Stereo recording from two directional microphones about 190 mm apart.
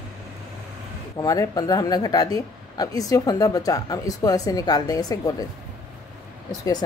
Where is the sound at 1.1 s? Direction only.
20° left (ahead or behind).